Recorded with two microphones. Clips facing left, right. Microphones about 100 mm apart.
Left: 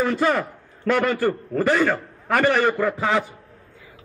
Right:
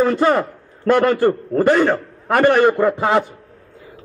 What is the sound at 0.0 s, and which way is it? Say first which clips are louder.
A man's voice: right 5 dB; 25° right (ahead or behind).